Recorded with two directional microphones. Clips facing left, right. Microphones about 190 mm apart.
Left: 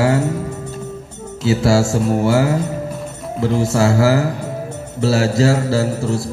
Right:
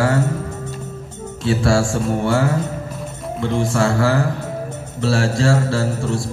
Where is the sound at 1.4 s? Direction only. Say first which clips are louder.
Left 2 dB; 25° left (ahead or behind).